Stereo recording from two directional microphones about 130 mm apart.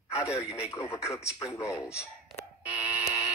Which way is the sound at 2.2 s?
10° right (ahead or behind).